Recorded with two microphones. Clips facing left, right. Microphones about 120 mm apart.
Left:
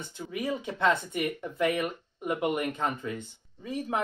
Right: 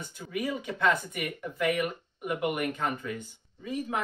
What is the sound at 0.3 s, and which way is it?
Speech, 25° left (ahead or behind).